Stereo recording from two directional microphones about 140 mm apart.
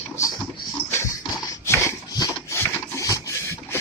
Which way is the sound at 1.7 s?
20° left (ahead or behind).